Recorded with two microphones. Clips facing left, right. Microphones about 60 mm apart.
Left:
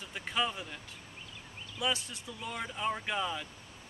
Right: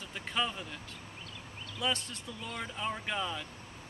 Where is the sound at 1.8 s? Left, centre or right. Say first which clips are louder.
Even; centre.